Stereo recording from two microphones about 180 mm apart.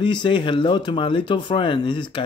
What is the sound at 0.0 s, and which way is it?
Speech, 25° left (ahead or behind).